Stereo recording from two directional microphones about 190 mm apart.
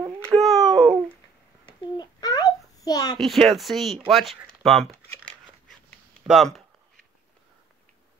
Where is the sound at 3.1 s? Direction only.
Centre (ahead or behind).